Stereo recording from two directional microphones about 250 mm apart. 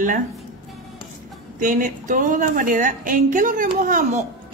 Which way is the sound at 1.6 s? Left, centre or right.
Right.